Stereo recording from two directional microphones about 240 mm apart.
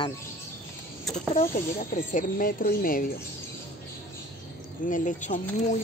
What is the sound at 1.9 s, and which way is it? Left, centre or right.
Speech, left.